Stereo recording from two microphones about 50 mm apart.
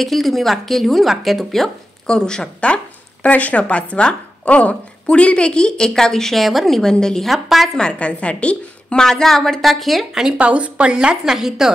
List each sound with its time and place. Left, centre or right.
0.0 s a woman's voice: centre
2.0 s speech: centre
3.3 s speech: left; by 7.2 s centre
7.2 s a woman's voice: centre
8.0 s a woman's voice: left
9.0 s a woman's voice: centre
10.2 s a woman's voice: right